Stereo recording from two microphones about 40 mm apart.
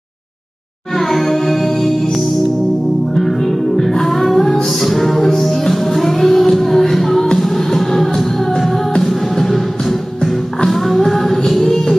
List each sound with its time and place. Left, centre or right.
0.9 s music: centre